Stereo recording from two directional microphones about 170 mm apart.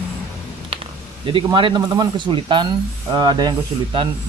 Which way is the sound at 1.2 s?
30° right (ahead or behind).